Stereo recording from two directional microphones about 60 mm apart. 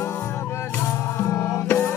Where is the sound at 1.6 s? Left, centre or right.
Left.